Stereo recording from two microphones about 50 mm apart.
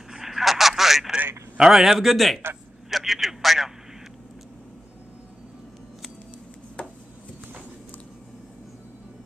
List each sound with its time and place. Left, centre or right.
0.1 s telephone: centre
1.6 s speech: centre
6.8 s a sound: centre